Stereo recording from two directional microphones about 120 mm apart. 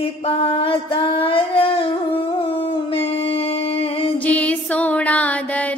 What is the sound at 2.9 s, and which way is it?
Music, 50° left (ahead or behind).